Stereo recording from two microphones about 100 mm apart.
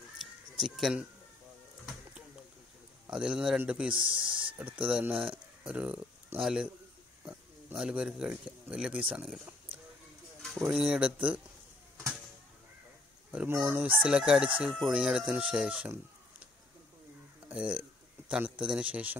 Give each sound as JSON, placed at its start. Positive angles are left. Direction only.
{"t": 0.2, "sound": "music", "side_deg": 0}
{"t": 3.1, "sound": "speech", "side_deg": -10}
{"t": 3.9, "sound": "speech", "side_deg": -55}
{"t": 4.6, "sound": "speech", "side_deg": -10}
{"t": 5.3, "sound": "a sound", "side_deg": -10}
{"t": 6.4, "sound": "speech", "side_deg": -10}
{"t": 7.7, "sound": "speech", "side_deg": -10}
{"t": 10.6, "sound": "speech", "side_deg": -5}
{"t": 13.7, "sound": "speech", "side_deg": -15}
{"t": 17.5, "sound": "speech", "side_deg": -10}